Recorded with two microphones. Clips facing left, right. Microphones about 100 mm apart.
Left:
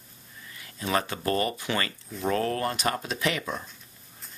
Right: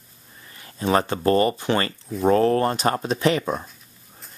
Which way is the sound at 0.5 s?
35° right (ahead or behind).